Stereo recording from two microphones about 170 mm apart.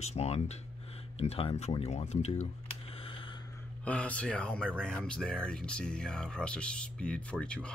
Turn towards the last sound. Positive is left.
turn(degrees=5)  # may be behind; listen again after turning